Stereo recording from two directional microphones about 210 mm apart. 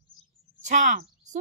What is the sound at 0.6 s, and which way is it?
Speech, 35° right (ahead or behind).